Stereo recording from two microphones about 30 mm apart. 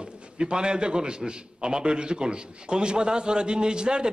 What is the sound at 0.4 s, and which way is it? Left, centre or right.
A man's voice, right.